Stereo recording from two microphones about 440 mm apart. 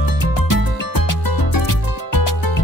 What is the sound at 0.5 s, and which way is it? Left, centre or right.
Music, left.